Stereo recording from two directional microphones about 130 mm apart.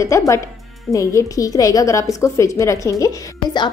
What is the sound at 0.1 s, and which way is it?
A woman's voice, 20° left (ahead or behind).